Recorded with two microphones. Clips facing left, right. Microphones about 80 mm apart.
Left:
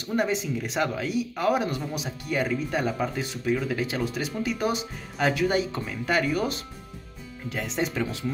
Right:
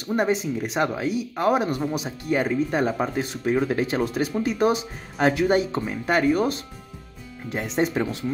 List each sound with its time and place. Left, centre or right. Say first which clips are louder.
0.1 s speech: right 3 dB; right
7.8 s speech: right 5 dB; right